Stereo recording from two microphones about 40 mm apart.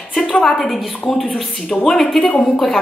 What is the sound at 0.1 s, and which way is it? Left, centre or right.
A woman's voice, centre.